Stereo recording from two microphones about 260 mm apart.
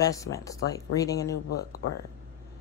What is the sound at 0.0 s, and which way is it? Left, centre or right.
Speech, centre.